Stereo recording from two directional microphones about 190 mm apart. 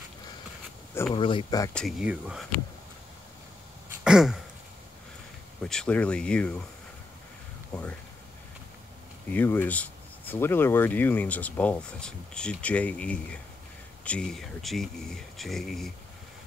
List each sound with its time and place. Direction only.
1.1 s speech: 25° left (ahead or behind)
1.7 s speech: centre (ahead or behind)
4.0 s throat clearing: 5° right (ahead or behind)
5.6 s speech: 5° left (ahead or behind)
9.3 s speech: 10° left (ahead or behind)